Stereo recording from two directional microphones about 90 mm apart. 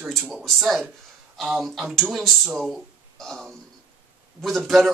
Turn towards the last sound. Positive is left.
turn(degrees=0)  # may be behind; listen again after turning